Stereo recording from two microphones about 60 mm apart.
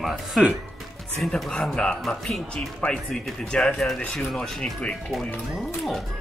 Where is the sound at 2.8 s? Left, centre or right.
Centre.